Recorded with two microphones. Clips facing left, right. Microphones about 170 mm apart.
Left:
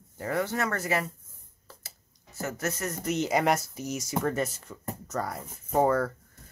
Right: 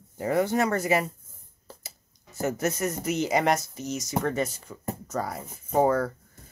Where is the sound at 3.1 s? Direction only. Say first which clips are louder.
Even; centre (ahead or behind).